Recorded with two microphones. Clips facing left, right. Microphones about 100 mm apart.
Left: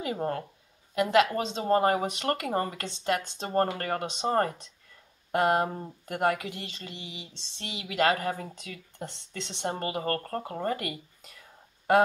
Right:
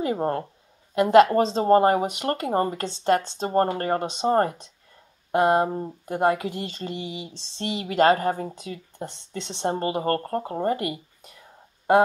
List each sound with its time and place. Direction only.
0.0 s speech: 35° right (ahead or behind)